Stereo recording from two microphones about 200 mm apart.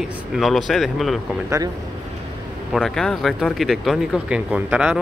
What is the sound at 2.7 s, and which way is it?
Speech, centre (ahead or behind).